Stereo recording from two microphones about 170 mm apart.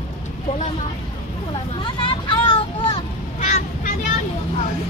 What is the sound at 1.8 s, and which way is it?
Vehicle, 30° left (ahead or behind).